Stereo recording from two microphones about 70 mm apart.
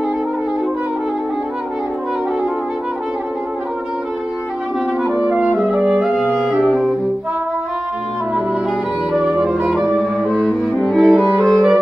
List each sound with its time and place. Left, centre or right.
5.0 s music: centre
5.3 s music: centre
5.6 s music: centre
9.1 s music: centre